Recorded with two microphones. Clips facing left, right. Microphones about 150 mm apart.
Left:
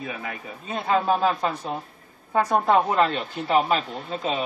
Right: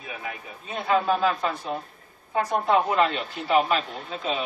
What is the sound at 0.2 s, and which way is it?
Speech, 40° left (ahead or behind).